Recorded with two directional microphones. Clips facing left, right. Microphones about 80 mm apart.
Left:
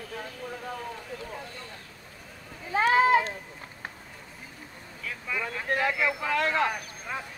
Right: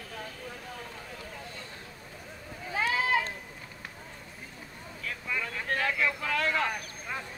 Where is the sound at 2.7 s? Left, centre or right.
Left.